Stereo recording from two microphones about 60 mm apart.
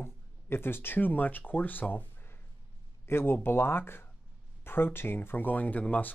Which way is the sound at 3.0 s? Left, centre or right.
Left.